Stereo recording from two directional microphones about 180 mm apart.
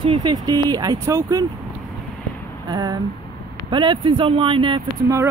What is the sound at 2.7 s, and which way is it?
Speech, 20° right (ahead or behind).